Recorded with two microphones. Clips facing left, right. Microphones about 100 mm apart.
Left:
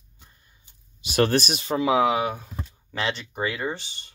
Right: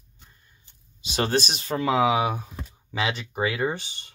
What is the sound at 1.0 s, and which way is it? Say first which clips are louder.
Speech: left 3 dB; 25° right (ahead or behind).